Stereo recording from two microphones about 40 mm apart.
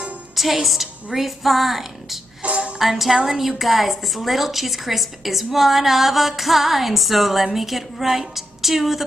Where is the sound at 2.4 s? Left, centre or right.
Right.